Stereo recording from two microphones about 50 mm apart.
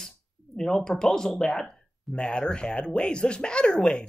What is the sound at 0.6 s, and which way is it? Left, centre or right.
Speech, centre.